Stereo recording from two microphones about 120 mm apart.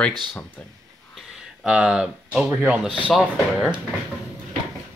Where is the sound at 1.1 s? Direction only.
5° right (ahead or behind).